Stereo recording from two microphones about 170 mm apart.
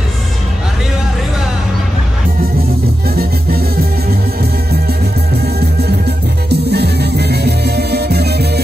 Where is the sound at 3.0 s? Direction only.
65° right (ahead or behind).